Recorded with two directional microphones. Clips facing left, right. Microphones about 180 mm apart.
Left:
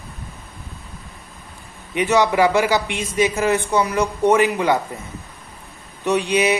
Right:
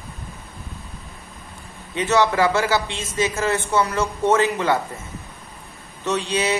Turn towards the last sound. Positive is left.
turn(degrees=15)  # may be behind; listen again after turning